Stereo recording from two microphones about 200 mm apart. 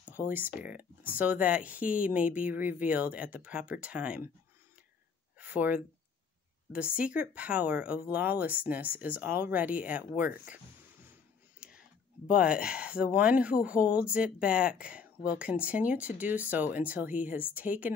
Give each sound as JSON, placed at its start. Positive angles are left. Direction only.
{"t": 0.1, "sound": "speech", "side_deg": -10}
{"t": 5.4, "sound": "a sound", "side_deg": -5}
{"t": 6.7, "sound": "speech", "side_deg": -5}
{"t": 10.4, "sound": "a sound", "side_deg": -5}
{"t": 12.3, "sound": "speech", "side_deg": 45}
{"t": 12.5, "sound": "speech", "side_deg": -5}